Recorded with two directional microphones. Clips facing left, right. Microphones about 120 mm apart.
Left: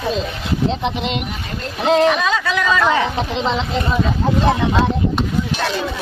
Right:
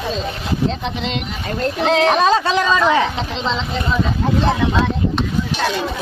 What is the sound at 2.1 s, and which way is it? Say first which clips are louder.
Music: right 4 dB; 35° right (ahead or behind).